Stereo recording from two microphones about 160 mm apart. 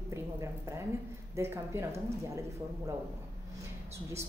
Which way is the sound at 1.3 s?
15° right (ahead or behind).